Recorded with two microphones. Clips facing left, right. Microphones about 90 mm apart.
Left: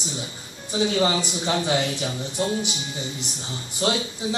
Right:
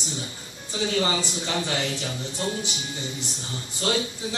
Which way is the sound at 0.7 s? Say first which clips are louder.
Left 3 dB; 15° left (ahead or behind).